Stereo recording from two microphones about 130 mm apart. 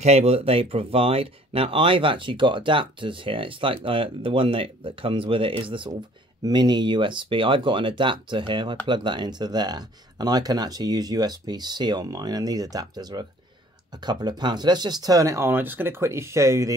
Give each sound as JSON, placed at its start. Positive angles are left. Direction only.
{"t": 0.0, "sound": "speech", "side_deg": -55}